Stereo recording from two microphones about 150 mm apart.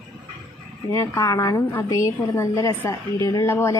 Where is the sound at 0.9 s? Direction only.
20° left (ahead or behind).